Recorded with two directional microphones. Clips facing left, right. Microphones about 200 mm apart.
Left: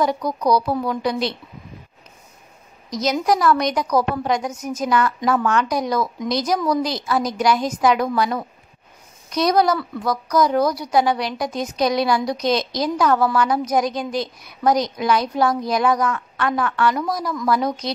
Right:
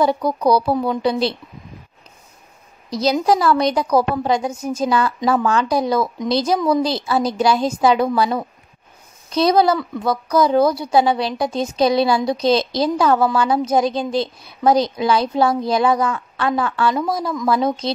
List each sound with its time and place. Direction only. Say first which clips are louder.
0.0 s a woman's voice: right 3 dB; 30° right (ahead or behind)
2.9 s a woman's voice: right 3 dB; 30° right (ahead or behind)